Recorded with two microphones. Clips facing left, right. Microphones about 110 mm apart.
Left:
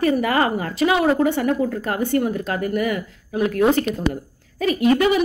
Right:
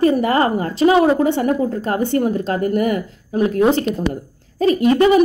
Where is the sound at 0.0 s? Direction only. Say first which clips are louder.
Right 3 dB; 30° right (ahead or behind).